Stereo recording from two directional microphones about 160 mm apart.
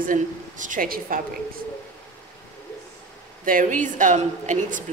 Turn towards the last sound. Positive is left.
turn(degrees=-50)  # may be behind; listen again after turning